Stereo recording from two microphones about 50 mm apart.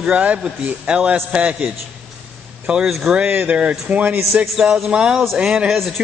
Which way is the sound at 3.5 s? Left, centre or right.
Right.